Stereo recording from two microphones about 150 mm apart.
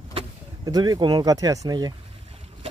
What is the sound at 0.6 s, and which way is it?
Speech, 25° right (ahead or behind).